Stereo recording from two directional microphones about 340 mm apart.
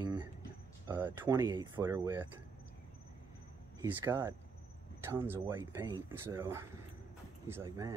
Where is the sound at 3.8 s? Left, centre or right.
Centre.